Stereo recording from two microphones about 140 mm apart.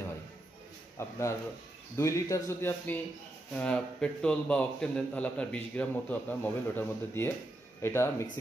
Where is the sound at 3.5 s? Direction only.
5° left (ahead or behind).